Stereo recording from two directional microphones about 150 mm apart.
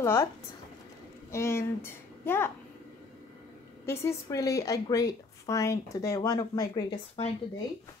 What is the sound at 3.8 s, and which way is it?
A woman's voice, 20° left (ahead or behind).